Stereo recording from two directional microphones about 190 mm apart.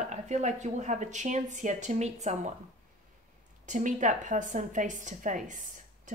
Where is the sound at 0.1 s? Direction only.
40° right (ahead or behind).